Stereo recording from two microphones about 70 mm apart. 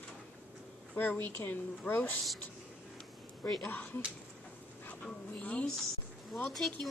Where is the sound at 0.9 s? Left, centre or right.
Left.